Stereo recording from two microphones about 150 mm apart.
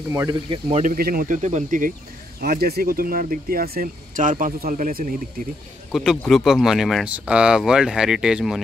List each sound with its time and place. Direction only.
0.3 s speech: 35° right (ahead or behind)
0.8 s speech: 75° right (ahead or behind); by 2.0 s 60° right (ahead or behind)
2.4 s speech: 90° right; by 5.1 s 60° right (ahead or behind)
5.9 s speech: centre (ahead or behind)